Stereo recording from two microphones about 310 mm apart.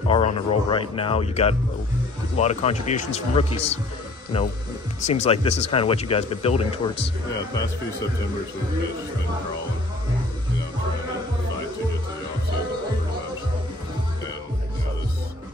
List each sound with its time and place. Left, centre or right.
0.1 s speech: centre